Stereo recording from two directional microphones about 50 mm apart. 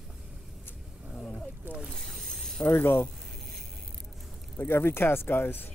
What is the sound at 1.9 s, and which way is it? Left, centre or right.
Mechanisms, centre.